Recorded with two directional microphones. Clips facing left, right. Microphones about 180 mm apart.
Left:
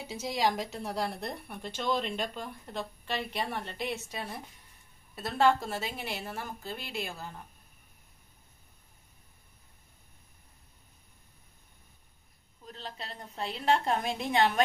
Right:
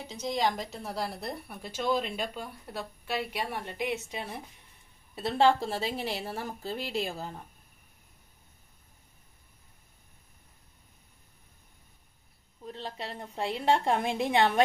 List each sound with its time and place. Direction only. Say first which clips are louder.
0.0 s a woman's voice: even; 5° left (ahead or behind); by 4.4 s 15° right (ahead or behind)
5.1 s a woman's voice: right 2 dB; 30° right (ahead or behind)
12.6 s a woman's voice: right 4 dB; 30° right (ahead or behind)